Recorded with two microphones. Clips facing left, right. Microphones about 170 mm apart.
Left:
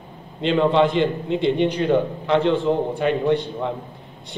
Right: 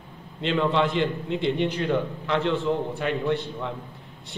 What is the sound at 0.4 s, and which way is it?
A man's voice, 20° left (ahead or behind).